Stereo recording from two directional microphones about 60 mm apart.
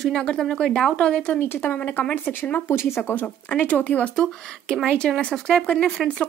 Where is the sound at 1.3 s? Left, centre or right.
Left.